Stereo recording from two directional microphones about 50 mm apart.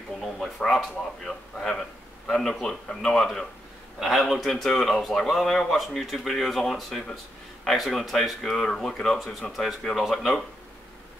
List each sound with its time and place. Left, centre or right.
0.6 s a man's voice: centre
4.0 s speech: centre